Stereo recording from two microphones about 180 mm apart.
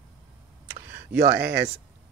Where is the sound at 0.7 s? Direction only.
60° right (ahead or behind).